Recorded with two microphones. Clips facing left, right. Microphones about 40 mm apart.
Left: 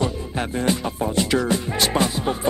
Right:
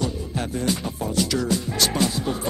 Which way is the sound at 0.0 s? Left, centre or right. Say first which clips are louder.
Left 3 dB; left.